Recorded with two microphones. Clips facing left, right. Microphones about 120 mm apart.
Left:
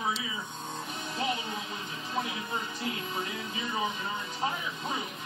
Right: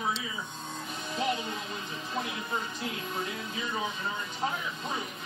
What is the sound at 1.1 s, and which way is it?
Music, centre (ahead or behind).